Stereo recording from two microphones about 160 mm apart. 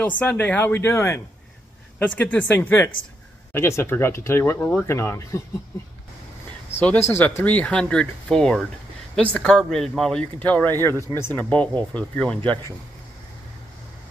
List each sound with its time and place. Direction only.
0.2 s speech: 10° left (ahead or behind)
6.8 s speech: 10° left (ahead or behind)